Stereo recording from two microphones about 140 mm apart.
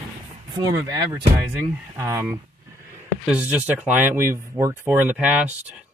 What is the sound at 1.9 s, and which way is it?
Speech, 20° right (ahead or behind).